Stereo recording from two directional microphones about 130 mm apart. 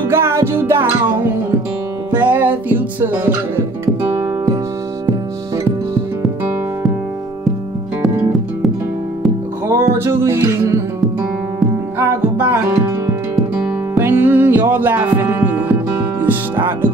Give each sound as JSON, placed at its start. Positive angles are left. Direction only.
{"t": 0.1, "sound": "music", "side_deg": -20}
{"t": 9.7, "sound": "music", "side_deg": -20}
{"t": 12.0, "sound": "music", "side_deg": -20}